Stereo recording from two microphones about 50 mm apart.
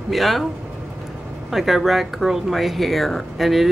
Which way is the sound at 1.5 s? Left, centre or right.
Centre.